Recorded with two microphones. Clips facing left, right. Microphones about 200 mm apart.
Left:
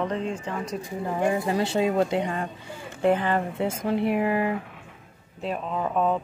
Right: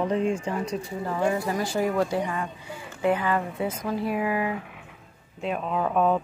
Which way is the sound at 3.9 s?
65° left (ahead or behind).